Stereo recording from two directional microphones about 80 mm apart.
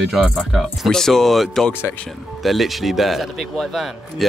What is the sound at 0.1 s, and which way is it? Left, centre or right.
Speech, centre.